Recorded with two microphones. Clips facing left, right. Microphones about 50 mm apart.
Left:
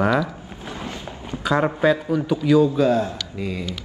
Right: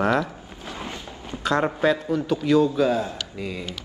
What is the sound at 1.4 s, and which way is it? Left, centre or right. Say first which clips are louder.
A man's voice: left 2 dB; centre.